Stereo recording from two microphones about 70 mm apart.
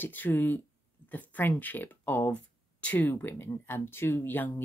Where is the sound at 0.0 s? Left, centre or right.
Left.